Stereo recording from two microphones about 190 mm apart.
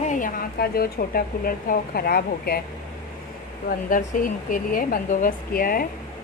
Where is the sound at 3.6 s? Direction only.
45° left (ahead or behind).